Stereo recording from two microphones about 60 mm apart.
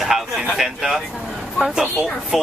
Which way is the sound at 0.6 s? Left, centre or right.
Centre.